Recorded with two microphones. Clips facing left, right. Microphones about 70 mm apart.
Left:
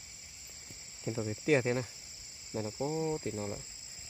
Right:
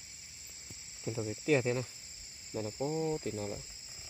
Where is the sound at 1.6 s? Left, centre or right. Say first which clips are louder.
Left 1 dB; left.